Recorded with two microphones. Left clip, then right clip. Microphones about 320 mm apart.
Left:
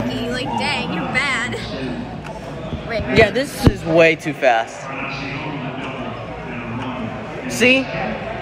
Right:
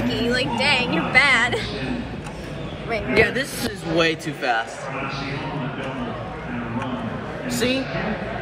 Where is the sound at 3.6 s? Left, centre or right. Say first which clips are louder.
Left 11 dB; centre.